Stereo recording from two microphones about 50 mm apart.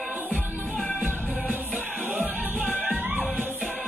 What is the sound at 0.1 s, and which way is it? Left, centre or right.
Music, right.